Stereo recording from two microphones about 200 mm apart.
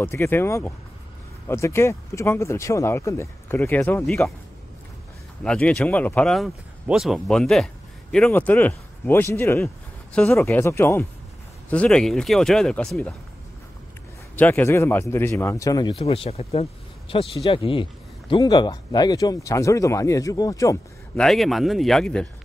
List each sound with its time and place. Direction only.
0.0 s speech: 10° left (ahead or behind)
5.4 s speech: 5° left (ahead or behind)
14.3 s speech: 10° left (ahead or behind)
15.9 s speech: 30° left (ahead or behind)
21.2 s speech: centre (ahead or behind)